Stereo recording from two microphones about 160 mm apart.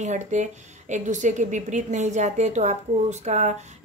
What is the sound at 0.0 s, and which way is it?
A woman's voice, 50° right (ahead or behind).